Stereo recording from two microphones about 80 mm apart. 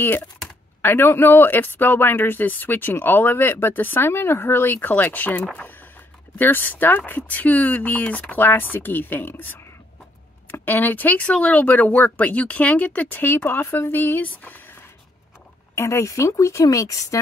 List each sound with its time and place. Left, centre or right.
0.8 s speech: left
15.7 s a woman's voice: left